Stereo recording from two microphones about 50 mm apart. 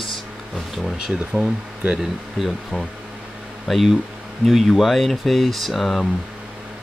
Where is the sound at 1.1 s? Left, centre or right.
Centre.